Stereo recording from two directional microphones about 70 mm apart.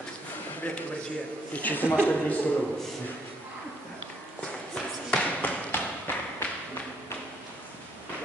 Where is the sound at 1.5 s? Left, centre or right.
Left.